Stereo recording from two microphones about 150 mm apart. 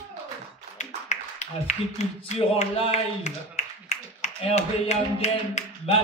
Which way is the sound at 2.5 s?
45° left (ahead or behind).